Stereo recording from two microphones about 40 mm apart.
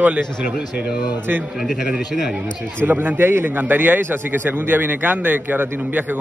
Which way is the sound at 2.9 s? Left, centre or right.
Right.